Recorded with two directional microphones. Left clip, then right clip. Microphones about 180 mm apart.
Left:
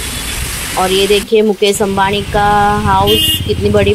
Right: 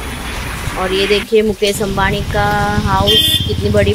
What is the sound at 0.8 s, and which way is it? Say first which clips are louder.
Speech: left 2 dB; 15° left (ahead or behind).